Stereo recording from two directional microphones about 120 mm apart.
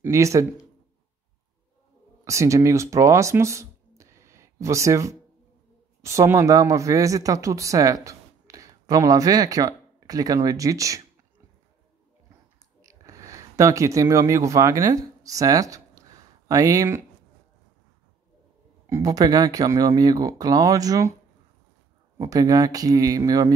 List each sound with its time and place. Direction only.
0.0 s speech: 25° right (ahead or behind)
2.2 s speech: 25° right (ahead or behind)
12.8 s speech: 25° right (ahead or behind)
18.9 s speech: 25° right (ahead or behind)
22.2 s speech: 30° right (ahead or behind)